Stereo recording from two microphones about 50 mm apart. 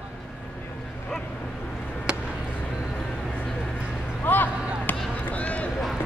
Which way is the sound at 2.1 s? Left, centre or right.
Centre.